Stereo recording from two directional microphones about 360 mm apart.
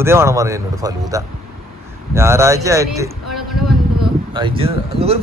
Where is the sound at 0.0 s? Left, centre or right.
Centre.